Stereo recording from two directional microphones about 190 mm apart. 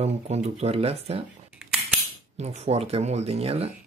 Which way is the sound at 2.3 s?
35° right (ahead or behind).